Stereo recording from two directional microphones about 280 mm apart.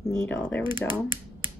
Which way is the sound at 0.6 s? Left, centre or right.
Centre.